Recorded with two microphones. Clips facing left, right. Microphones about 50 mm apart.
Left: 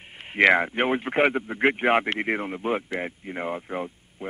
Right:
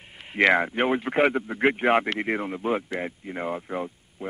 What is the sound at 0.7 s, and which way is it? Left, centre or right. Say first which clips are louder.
A man's voice: even; left.